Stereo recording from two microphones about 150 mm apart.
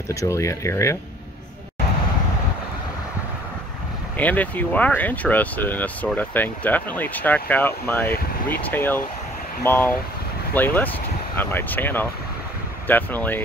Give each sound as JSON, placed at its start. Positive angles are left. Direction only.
{"t": 0.1, "sound": "speech", "side_deg": 20}
{"t": 4.2, "sound": "speech", "side_deg": 10}